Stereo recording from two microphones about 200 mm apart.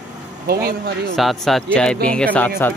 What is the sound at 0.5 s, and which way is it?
Speech, 50° right (ahead or behind).